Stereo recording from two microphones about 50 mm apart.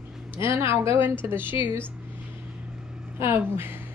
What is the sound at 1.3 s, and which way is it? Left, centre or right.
Speech, right.